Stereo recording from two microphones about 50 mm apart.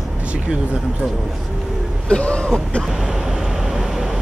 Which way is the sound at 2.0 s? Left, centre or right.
Left.